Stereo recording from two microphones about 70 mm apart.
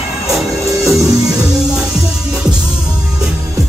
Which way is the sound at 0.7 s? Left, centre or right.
Right.